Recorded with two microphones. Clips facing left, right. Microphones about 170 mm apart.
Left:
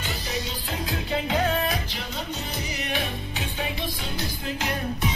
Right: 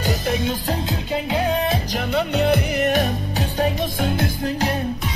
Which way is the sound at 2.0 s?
65° right (ahead or behind).